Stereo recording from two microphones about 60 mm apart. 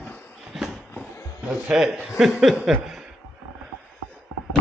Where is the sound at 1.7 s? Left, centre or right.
Centre.